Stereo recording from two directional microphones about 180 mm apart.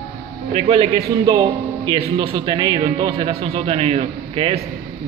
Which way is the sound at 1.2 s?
20° right (ahead or behind).